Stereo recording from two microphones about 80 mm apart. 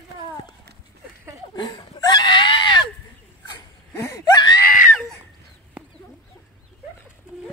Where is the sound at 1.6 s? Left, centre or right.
Left.